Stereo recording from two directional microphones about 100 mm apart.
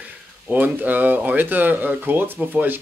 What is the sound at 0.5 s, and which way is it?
Speech, 15° right (ahead or behind).